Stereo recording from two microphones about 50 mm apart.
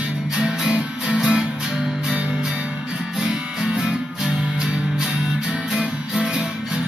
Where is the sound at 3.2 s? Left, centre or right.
Centre.